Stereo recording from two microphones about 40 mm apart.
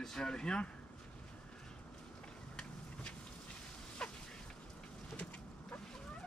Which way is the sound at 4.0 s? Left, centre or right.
Centre.